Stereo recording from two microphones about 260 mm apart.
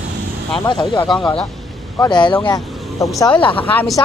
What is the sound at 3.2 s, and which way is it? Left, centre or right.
Speech, centre.